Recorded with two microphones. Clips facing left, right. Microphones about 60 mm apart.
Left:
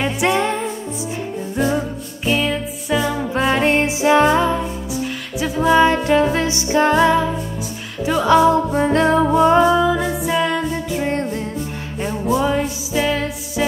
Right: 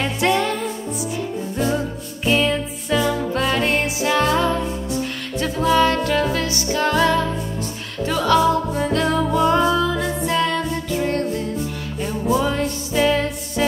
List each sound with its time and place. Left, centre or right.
0.0 s music: centre
1.6 s music: centre; by 9.4 s left
9.7 s music: centre
9.9 s music: centre
12.2 s music: centre